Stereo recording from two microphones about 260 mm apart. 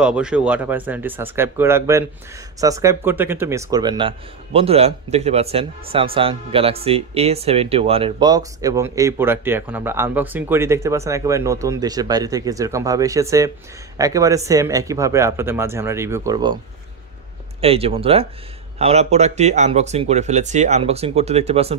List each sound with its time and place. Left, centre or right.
0.0 s speech: centre
17.6 s speech: right